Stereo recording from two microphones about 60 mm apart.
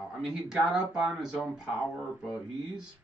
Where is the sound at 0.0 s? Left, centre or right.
Centre.